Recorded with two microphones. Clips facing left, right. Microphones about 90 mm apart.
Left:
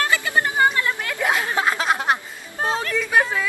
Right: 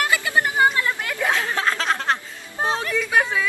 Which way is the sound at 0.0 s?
20° right (ahead or behind).